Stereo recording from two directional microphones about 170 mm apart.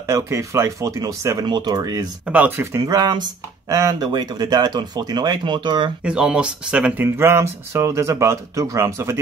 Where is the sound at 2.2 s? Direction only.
10° right (ahead or behind); by 5.9 s 25° right (ahead or behind).